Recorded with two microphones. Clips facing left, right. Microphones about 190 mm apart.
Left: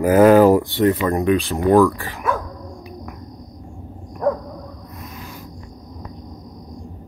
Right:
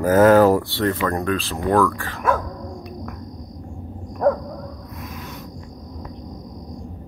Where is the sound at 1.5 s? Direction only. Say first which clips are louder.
Left 4 dB; 15° left (ahead or behind).